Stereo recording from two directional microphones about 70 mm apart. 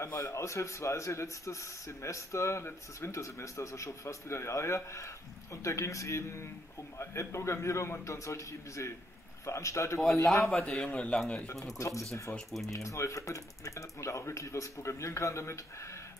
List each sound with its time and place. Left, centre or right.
0.0 s speech: left
10.7 s a man's voice: centre
11.6 s speech: left